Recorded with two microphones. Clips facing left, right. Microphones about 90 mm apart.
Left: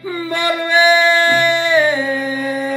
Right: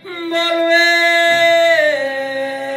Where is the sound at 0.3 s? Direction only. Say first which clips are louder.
Right 4 dB; 15° left (ahead or behind).